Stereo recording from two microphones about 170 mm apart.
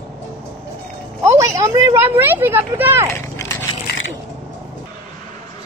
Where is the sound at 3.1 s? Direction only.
15° left (ahead or behind).